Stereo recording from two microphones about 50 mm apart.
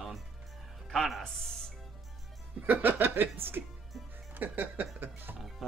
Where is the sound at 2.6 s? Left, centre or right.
Right.